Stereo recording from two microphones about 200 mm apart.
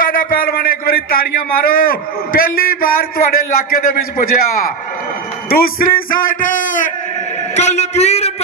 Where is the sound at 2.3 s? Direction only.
45° left (ahead or behind).